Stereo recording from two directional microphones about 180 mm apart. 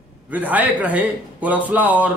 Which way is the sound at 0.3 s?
10° right (ahead or behind).